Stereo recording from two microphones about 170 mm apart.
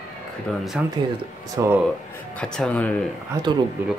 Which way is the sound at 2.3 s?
5° left (ahead or behind).